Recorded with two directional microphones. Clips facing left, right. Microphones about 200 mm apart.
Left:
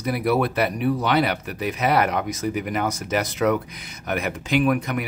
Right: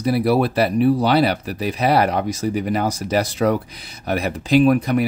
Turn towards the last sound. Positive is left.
turn(degrees=-35)  # may be behind; listen again after turning